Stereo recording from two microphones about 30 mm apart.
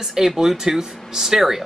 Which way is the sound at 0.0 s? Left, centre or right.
Centre.